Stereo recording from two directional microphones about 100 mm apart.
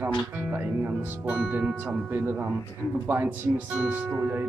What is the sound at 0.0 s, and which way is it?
Speech, 20° right (ahead or behind).